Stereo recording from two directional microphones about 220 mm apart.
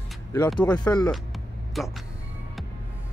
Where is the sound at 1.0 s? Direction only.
Centre (ahead or behind).